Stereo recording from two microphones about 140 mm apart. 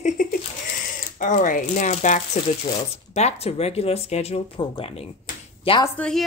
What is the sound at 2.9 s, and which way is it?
A woman's voice, 50° left (ahead or behind).